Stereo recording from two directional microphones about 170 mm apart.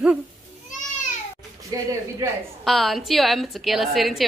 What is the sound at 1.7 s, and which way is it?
Speech, 20° right (ahead or behind).